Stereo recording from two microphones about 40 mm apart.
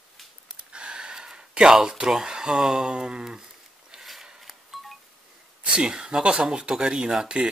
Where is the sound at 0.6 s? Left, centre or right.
Right.